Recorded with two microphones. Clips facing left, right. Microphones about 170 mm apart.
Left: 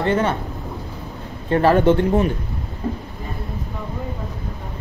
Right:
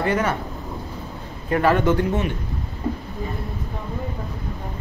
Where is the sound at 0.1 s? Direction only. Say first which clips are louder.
Left 2 dB; 25° left (ahead or behind).